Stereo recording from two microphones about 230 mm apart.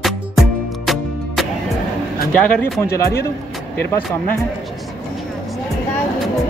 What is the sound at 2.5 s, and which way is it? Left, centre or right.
Speech, centre.